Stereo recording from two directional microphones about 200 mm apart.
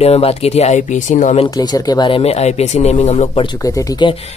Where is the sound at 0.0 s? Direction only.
30° left (ahead or behind).